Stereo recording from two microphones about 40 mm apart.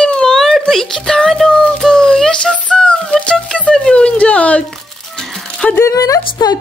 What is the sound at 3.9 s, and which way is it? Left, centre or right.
Speech, left.